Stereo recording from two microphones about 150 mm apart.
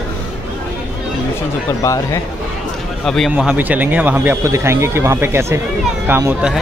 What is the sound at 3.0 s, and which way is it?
Speech, 5° left (ahead or behind).